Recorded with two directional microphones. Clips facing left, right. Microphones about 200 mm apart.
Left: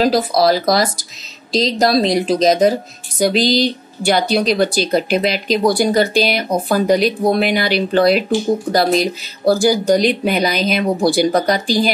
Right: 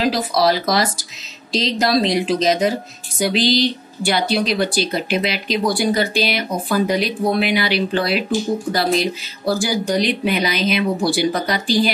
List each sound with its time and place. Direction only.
0.0 s speech: 40° left (ahead or behind)